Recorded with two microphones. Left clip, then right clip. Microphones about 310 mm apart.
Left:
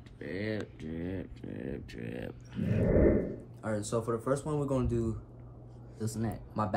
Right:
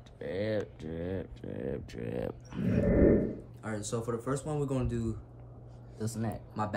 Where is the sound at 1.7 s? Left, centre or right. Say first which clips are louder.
Right 4 dB; right.